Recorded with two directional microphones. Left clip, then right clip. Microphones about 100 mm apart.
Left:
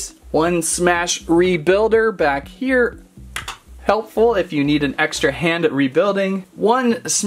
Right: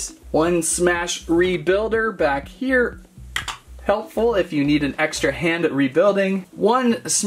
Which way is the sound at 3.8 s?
35° left (ahead or behind).